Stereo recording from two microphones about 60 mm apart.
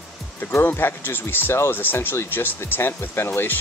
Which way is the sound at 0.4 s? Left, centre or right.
Left.